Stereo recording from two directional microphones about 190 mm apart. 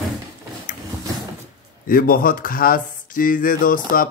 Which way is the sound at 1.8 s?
50° left (ahead or behind).